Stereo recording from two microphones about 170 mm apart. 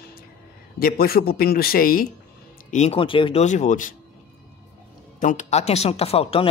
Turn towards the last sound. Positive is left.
turn(degrees=35)  # may be behind; listen again after turning